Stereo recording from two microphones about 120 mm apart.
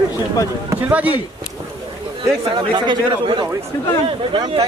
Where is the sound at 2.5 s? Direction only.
40° right (ahead or behind).